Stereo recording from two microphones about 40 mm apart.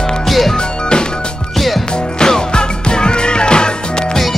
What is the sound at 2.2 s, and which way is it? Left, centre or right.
Music, centre.